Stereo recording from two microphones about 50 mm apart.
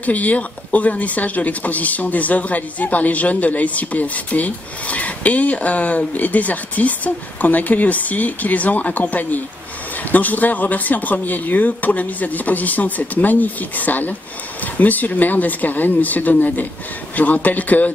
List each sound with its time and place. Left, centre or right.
0.0 s speech: left